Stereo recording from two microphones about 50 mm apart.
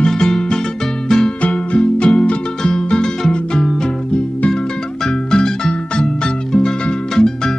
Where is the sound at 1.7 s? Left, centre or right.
Left.